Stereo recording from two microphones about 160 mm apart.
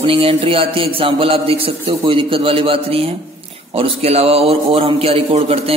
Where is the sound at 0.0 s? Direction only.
35° right (ahead or behind).